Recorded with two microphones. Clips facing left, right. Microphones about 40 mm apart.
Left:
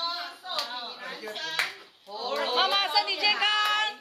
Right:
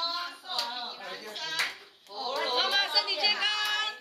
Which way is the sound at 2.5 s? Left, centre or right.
Left.